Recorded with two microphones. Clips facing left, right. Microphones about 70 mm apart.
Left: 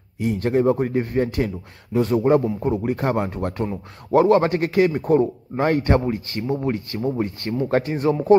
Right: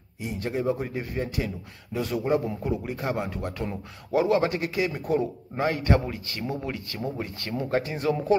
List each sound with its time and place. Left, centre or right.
0.2 s a man's voice: left